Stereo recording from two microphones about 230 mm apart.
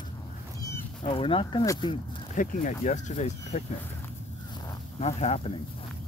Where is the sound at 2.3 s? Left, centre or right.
Left.